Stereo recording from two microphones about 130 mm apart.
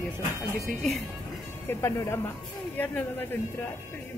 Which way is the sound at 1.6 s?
20° left (ahead or behind).